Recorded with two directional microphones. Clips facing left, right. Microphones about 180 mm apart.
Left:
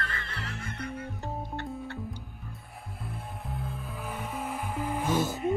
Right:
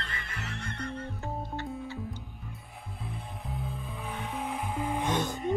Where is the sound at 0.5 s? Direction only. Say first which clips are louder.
Right 1 dB; 5° left (ahead or behind).